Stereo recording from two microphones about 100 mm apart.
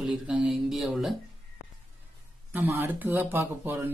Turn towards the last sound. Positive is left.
turn(degrees=-20)  # may be behind; listen again after turning